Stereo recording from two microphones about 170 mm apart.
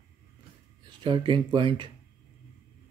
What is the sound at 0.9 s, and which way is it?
Speech, 30° right (ahead or behind).